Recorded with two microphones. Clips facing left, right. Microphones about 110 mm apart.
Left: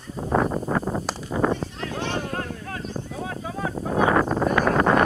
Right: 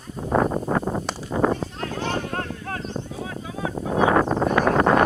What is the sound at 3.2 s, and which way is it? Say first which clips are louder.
Wind noise: left 1 dB; 45° left (ahead or behind).